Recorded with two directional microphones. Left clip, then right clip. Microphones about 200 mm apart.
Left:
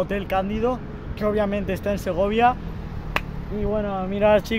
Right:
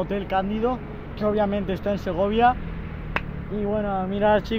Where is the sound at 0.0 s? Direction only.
15° left (ahead or behind).